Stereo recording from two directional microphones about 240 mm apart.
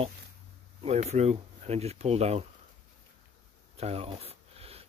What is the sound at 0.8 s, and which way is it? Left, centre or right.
Speech, right.